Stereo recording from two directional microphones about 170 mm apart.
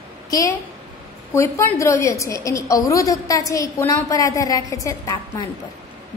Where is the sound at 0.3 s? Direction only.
20° left (ahead or behind).